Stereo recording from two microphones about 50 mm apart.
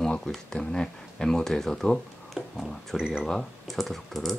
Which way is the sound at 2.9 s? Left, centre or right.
Centre.